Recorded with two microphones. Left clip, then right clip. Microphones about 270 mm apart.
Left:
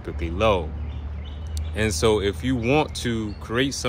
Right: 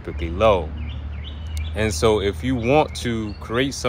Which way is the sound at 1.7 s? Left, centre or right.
Centre.